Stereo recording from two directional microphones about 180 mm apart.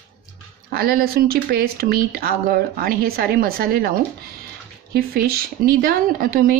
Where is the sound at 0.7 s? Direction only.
60° right (ahead or behind).